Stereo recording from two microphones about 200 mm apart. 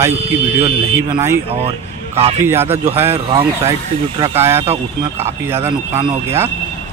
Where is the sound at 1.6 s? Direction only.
30° right (ahead or behind).